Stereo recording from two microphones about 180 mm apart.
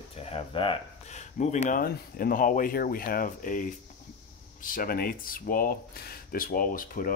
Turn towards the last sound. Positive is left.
turn(degrees=50)  # may be behind; listen again after turning